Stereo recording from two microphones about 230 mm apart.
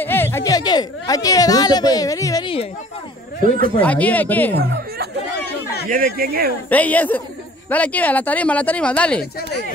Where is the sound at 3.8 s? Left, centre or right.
Centre.